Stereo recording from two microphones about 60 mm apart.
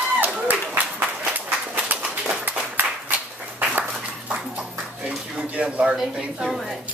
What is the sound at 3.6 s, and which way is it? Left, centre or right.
Dog, right.